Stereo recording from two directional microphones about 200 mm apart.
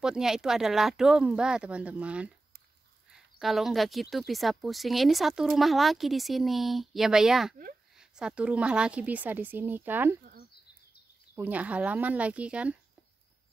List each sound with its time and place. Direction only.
0.0 s a woman's voice: 5° right (ahead or behind)
11.3 s a woman's voice: 10° right (ahead or behind)